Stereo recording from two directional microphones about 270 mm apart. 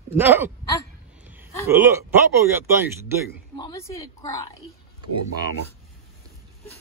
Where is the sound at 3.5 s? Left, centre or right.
Centre.